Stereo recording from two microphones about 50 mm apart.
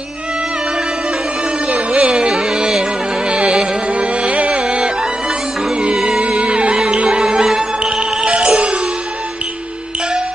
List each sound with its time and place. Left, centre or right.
1.7 s music: right
5.9 s music: centre
6.2 s music: right